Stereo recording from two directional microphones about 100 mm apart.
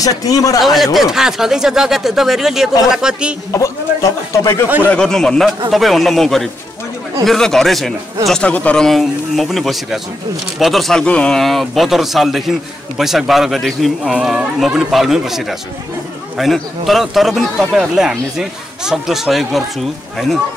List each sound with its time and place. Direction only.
0.0 s speech: 35° left (ahead or behind)
0.6 s speech: centre (ahead or behind)
3.5 s speech: 30° left (ahead or behind)
4.8 s speech: 5° left (ahead or behind)